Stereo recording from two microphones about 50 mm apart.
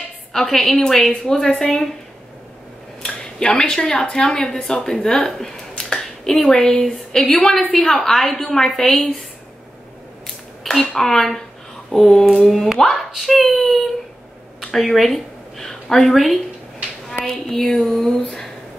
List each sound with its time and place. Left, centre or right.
0.3 s speech: centre
3.4 s speech: centre
10.2 s a sound: centre
11.0 s speech: centre
13.1 s speech: centre
13.4 s a sound: centre
14.7 s a woman's voice: centre
17.2 s a sound: centre
18.0 s speech: centre